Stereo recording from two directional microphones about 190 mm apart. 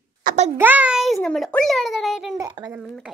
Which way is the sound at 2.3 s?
20° right (ahead or behind).